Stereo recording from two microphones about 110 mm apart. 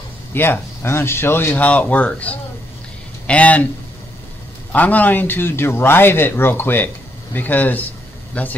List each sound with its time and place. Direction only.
0.3 s speech: 20° left (ahead or behind)
4.7 s speech: 15° left (ahead or behind)